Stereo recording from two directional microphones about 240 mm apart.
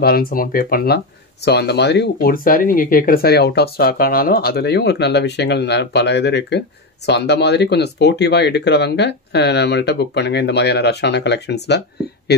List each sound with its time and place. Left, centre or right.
0.0 s speech: left